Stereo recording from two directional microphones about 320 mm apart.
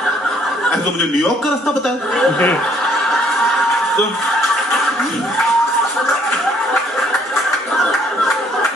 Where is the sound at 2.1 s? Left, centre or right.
Centre.